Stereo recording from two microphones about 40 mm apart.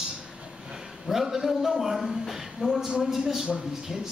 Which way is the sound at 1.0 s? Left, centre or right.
Centre.